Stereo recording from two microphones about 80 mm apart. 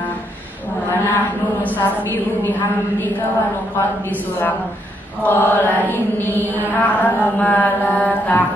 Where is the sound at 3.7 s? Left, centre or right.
Left.